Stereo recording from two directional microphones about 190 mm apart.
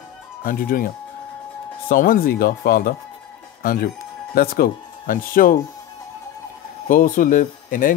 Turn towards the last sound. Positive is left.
turn(degrees=45)  # may be behind; listen again after turning